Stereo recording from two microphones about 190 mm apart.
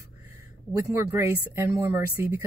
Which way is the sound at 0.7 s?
15° right (ahead or behind).